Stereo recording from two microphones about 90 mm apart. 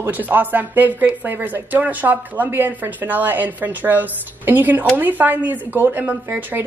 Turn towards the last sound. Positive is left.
turn(degrees=-20)  # may be behind; listen again after turning